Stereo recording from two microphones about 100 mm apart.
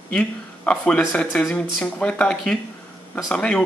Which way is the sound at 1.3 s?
Centre (ahead or behind).